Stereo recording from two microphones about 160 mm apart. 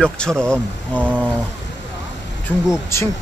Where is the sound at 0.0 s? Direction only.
5° left (ahead or behind).